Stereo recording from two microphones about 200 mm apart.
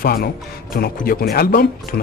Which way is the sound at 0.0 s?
50° left (ahead or behind).